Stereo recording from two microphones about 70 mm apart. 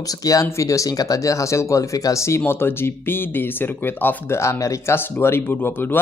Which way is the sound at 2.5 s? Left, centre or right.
Left.